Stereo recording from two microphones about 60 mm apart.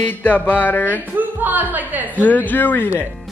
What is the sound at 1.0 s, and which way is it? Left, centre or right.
Speech, right.